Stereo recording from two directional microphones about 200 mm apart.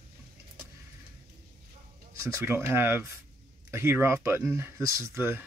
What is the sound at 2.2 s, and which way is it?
Speech, 15° right (ahead or behind).